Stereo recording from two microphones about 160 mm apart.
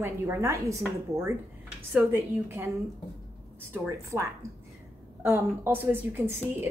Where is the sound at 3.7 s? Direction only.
15° right (ahead or behind).